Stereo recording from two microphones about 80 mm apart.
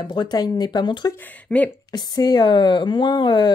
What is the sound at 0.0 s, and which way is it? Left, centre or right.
Speech, left.